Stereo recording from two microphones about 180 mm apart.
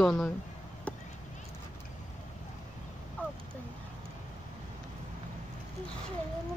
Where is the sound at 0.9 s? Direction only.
5° left (ahead or behind).